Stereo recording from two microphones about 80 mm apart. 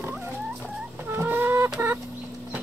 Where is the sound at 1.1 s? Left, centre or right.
Right.